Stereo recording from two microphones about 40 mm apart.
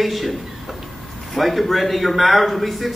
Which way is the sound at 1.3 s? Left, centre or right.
Centre.